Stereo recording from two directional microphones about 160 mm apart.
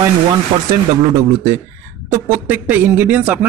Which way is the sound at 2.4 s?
10° right (ahead or behind).